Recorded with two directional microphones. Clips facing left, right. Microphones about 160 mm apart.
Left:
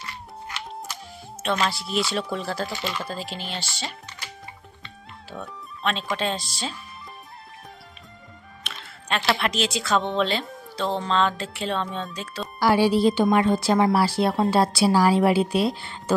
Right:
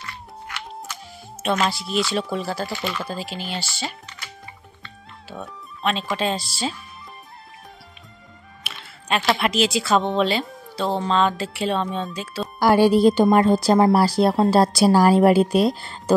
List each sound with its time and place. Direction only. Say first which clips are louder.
1.7 s speech: right 3 dB; centre (ahead or behind)
5.3 s speech: right 1 dB; 5° right (ahead or behind)
8.6 s music: even; 5° right (ahead or behind)
9.4 s speech: right 5 dB; 5° right (ahead or behind)
12.5 s a woman's voice: right 4 dB; 50° right (ahead or behind)